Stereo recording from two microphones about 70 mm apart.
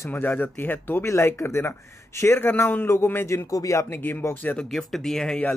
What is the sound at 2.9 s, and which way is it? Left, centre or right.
Speech, left.